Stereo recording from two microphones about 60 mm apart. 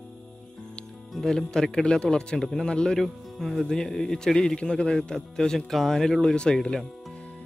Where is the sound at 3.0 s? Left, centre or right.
Centre.